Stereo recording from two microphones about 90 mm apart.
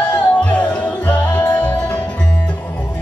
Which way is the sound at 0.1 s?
15° left (ahead or behind).